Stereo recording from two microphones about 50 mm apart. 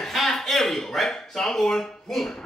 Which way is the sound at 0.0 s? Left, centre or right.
Centre.